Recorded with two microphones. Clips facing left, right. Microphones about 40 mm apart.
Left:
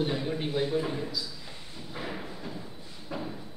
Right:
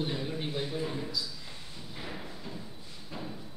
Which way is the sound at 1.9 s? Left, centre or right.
Centre.